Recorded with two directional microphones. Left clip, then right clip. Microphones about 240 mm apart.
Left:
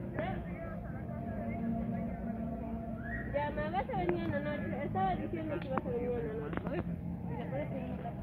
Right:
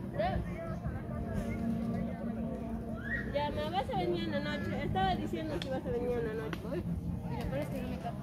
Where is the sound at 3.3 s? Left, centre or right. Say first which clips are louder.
Even; centre.